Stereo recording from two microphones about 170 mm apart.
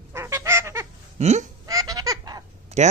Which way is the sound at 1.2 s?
40° right (ahead or behind).